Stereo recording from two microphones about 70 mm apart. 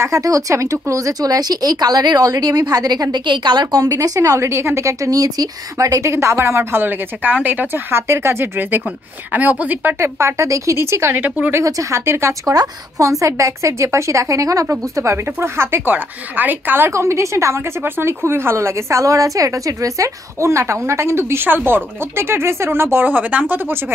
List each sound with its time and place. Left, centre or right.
0.0 s speech: right
9.9 s a woman's voice: right
11.1 s speech: right
11.5 s speech: right
15.3 s a woman's voice: right
16.9 s a woman's voice: right
23.0 s speech: right